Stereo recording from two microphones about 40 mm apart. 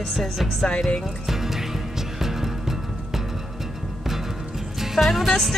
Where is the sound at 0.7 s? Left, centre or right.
Left.